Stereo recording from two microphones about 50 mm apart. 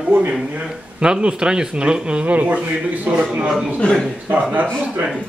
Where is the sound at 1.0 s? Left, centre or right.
Centre.